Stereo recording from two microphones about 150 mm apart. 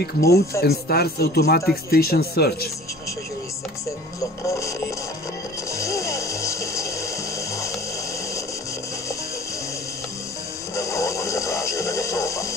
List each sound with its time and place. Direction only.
0.0 s speech: 90° left
4.5 s music: 20° left (ahead or behind)
10.8 s music: 20° left (ahead or behind)